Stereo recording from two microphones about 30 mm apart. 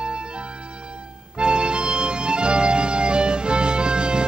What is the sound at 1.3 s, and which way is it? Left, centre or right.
Music, right.